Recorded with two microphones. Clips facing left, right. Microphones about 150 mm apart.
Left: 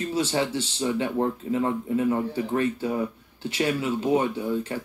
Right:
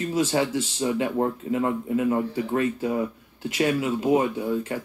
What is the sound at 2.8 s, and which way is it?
Speech, 25° right (ahead or behind).